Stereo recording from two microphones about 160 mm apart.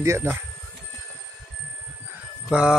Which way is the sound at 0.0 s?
15° right (ahead or behind).